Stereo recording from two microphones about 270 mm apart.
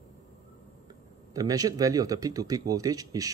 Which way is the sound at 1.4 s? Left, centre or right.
Centre.